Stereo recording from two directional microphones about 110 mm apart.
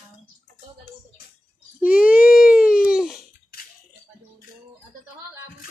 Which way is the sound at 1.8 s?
10° right (ahead or behind).